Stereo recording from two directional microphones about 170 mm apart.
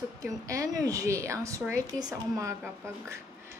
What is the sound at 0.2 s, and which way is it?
A woman's voice, 20° right (ahead or behind).